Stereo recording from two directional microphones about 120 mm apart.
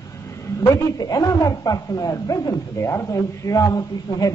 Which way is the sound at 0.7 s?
30° left (ahead or behind).